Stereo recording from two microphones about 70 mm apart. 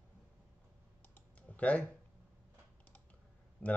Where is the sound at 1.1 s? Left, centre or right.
Left.